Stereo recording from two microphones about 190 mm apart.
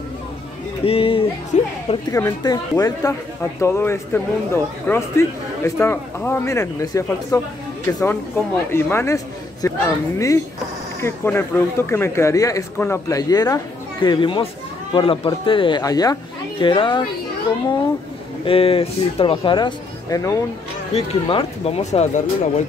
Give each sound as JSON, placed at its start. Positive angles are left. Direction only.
{"t": 0.8, "sound": "a sound", "side_deg": 30}
{"t": 2.0, "sound": "speech", "side_deg": 15}
{"t": 18.4, "sound": "speech", "side_deg": 30}
{"t": 20.9, "sound": "speech", "side_deg": 30}